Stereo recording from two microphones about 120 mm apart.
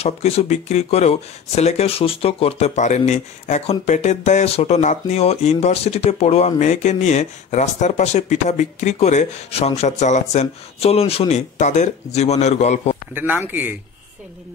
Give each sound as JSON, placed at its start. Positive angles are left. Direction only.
{"t": 0.0, "sound": "speech", "side_deg": 60}
{"t": 13.1, "sound": "speech", "side_deg": -15}